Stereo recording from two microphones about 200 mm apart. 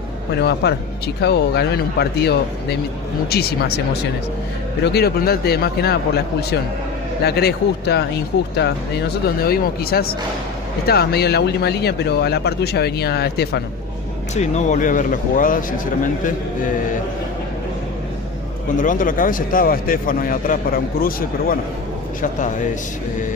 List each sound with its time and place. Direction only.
0.5 s a man's voice: 55° left (ahead or behind)
9.2 s a man's voice: 50° left (ahead or behind)
14.3 s speech: 35° left (ahead or behind)
18.8 s a man's voice: 40° left (ahead or behind)